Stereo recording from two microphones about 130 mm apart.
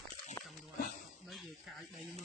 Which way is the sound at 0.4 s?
30° left (ahead or behind).